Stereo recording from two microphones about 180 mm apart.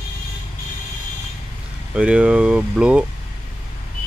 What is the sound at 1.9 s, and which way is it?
Speech, 5° right (ahead or behind).